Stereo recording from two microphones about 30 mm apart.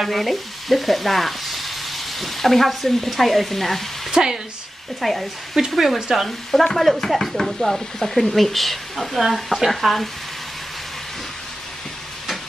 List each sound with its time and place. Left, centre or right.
0.1 s frying: centre
4.1 s speech: centre
5.0 s speech: centre